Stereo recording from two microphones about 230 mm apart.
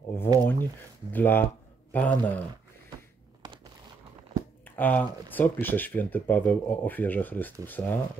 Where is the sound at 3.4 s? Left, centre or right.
Centre.